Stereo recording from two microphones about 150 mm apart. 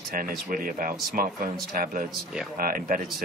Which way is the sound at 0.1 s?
70° right (ahead or behind).